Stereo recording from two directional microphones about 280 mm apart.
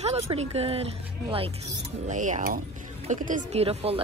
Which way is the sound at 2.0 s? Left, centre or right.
Right.